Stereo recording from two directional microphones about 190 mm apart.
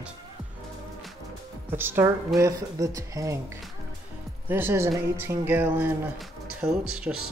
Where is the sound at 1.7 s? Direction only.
10° right (ahead or behind).